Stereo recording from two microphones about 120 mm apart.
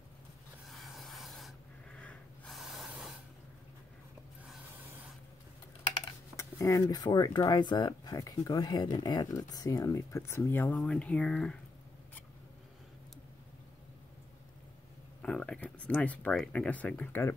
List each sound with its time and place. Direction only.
0.7 s snort: centre (ahead or behind)
6.3 s speech: 25° left (ahead or behind); by 11.5 s 10° left (ahead or behind)
15.2 s a sound: 10° left (ahead or behind)
16.3 s speech: 10° left (ahead or behind)